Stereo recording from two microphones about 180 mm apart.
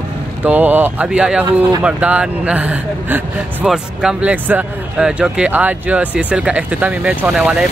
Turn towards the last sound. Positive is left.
turn(degrees=-5)  # may be behind; listen again after turning